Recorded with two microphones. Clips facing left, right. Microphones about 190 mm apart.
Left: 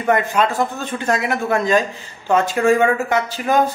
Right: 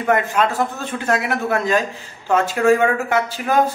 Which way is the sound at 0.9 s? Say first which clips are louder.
Even; 5° right (ahead or behind).